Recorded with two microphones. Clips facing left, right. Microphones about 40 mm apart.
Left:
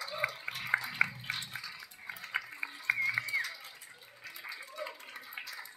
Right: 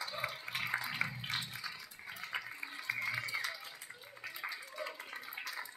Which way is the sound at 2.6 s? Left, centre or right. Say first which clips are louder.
Left 8 dB; left.